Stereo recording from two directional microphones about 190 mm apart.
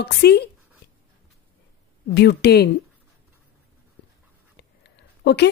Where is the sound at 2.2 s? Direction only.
60° left (ahead or behind).